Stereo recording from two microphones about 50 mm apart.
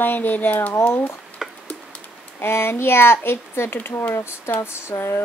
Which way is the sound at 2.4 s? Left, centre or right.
Left.